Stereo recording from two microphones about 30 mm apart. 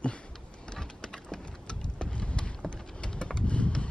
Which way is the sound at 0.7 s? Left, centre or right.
Left.